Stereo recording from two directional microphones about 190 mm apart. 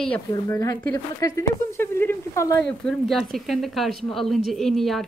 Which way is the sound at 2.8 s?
Centre (ahead or behind).